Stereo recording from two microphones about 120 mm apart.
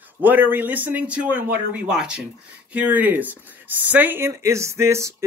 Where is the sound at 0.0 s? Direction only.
15° right (ahead or behind).